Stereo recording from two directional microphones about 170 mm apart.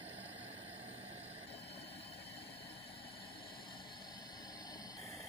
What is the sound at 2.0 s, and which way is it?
Vehicle, 75° left (ahead or behind).